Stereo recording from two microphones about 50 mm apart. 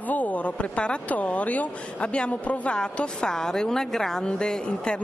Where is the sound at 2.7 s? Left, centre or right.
Centre.